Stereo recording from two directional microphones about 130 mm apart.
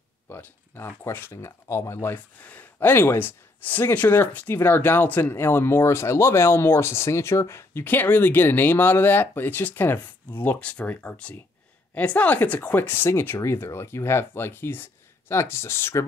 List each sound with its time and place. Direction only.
0.3 s speech: 15° left (ahead or behind)